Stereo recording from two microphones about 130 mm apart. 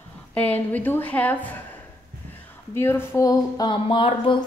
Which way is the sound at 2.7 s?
20° left (ahead or behind).